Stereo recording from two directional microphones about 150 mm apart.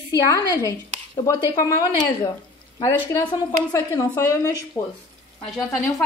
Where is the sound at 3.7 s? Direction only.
20° left (ahead or behind).